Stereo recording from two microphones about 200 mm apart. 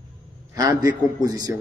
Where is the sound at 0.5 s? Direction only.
20° right (ahead or behind).